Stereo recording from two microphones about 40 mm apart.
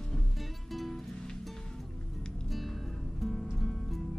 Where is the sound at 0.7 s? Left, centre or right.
Centre.